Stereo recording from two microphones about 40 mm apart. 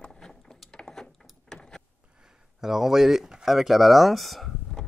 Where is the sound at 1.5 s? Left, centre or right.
Centre.